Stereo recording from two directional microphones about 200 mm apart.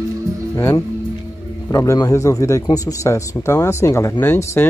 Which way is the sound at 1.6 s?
15° left (ahead or behind).